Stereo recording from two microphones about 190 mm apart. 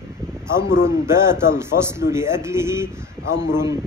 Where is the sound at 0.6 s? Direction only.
15° right (ahead or behind).